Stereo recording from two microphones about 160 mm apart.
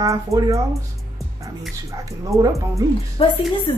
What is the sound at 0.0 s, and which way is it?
Speech, 20° right (ahead or behind).